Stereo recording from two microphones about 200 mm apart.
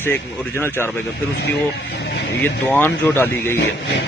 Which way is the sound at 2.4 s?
10° left (ahead or behind).